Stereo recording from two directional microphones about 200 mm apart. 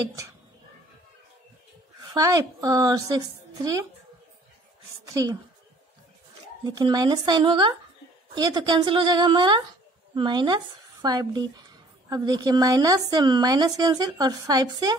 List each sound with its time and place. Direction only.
2.1 s a woman's voice: 15° right (ahead or behind)
5.0 s speech: 20° right (ahead or behind)
6.6 s speech: 20° right (ahead or behind)